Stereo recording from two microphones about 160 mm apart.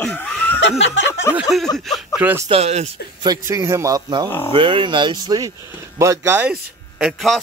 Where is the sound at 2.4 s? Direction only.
40° right (ahead or behind).